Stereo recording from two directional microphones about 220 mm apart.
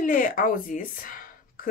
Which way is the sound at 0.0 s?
40° left (ahead or behind).